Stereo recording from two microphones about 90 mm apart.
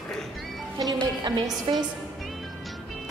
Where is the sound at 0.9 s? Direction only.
50° right (ahead or behind).